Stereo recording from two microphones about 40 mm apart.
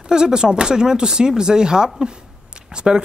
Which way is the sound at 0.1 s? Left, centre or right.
Centre.